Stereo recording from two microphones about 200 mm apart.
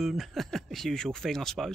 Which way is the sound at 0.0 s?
Centre (ahead or behind).